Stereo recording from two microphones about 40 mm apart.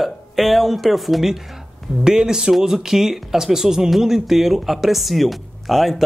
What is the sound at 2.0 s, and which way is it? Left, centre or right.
Speech, centre.